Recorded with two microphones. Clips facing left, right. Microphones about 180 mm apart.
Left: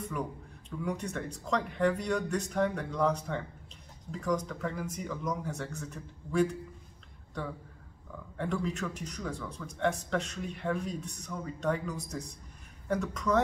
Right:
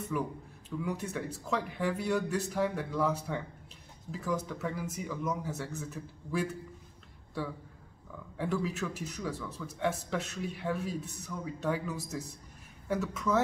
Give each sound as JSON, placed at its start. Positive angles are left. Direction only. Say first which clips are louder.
{"t": 0.1, "sound": "a man's voice", "louder": "right 6 dB", "side_deg": -5}
{"t": 8.4, "sound": "a man's voice", "louder": "even", "side_deg": -5}